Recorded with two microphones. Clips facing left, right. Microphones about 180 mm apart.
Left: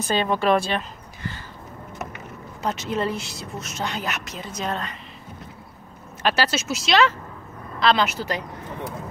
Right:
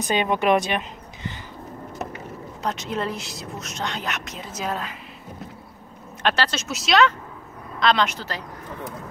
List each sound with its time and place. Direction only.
0.0 s speech: 15° right (ahead or behind)
2.6 s speech: centre (ahead or behind)
6.2 s speech: 5° left (ahead or behind)